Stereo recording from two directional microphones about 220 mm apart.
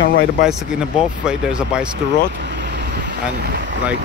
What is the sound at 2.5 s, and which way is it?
Vehicle, 50° right (ahead or behind).